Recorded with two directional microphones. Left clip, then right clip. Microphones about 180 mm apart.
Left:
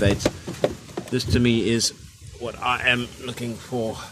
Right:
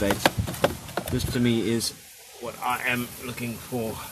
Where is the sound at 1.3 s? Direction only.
25° left (ahead or behind).